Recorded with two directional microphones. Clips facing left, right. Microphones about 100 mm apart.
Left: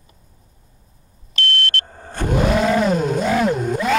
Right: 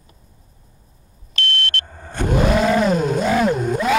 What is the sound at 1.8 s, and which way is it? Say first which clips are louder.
Vehicle: even; 40° left (ahead or behind).